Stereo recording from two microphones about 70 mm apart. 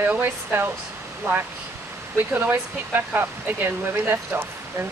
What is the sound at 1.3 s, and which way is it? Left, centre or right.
A woman's voice, right.